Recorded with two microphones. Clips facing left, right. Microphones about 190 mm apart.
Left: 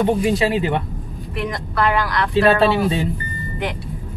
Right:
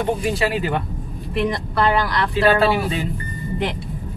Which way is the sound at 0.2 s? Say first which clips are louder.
Left 3 dB; 20° left (ahead or behind).